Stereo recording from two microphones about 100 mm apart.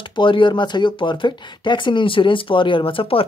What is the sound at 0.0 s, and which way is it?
Speech, 55° left (ahead or behind).